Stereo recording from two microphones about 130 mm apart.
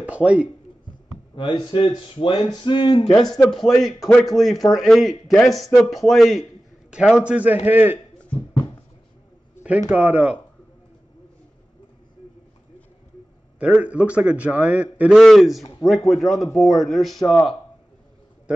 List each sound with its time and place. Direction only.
0.0 s speech: 10° right (ahead or behind)
1.3 s a man's voice: 40° left (ahead or behind)
3.4 s a man's voice: centre (ahead or behind); by 8.0 s 15° right (ahead or behind)
9.6 s a man's voice: 10° right (ahead or behind)
13.7 s a man's voice: 10° right (ahead or behind)
15.0 s a man's voice: centre (ahead or behind)